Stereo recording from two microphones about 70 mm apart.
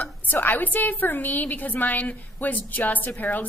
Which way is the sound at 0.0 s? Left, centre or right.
Left.